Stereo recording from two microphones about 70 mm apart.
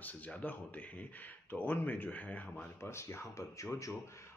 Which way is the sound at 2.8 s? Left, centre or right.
Left.